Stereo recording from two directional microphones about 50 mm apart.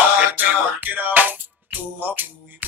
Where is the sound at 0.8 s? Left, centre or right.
Right.